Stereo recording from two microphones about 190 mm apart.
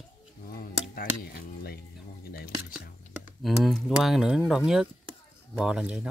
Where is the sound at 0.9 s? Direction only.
50° left (ahead or behind).